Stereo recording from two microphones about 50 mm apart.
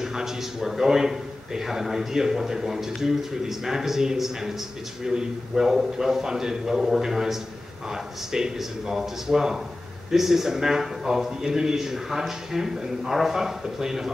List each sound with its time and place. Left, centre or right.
0.0 s speech: centre